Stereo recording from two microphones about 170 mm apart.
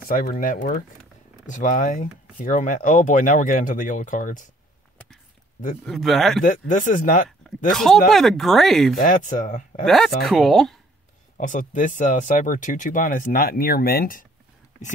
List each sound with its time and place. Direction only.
0.1 s speech: 55° left (ahead or behind)
5.9 s speech: centre (ahead or behind)
6.4 s speech: 50° left (ahead or behind)
7.2 s speech: centre (ahead or behind)
8.9 s speech: 50° left (ahead or behind)
9.8 s speech: centre (ahead or behind)
11.3 s speech: 50° left (ahead or behind)